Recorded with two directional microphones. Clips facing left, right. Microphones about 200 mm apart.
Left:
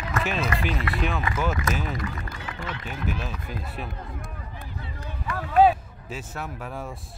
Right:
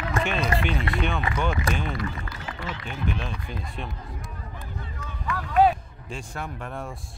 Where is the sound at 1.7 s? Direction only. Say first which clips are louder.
Even; 35° right (ahead or behind).